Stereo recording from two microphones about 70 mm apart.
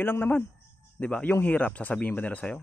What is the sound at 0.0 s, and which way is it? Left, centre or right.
A man's voice, left.